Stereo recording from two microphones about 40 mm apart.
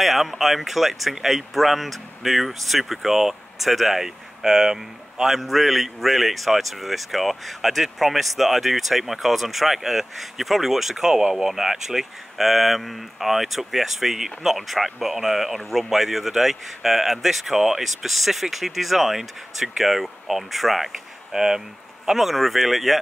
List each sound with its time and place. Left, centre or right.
0.0 s speech: centre